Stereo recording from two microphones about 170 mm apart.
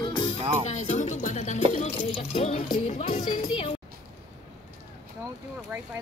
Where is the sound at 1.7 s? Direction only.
40° left (ahead or behind).